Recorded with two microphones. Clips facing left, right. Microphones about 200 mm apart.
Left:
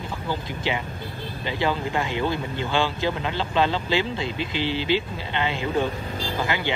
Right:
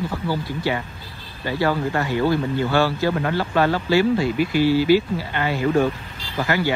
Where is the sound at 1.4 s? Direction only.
20° left (ahead or behind).